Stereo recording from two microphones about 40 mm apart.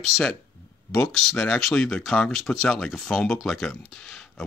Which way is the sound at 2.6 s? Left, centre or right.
Centre.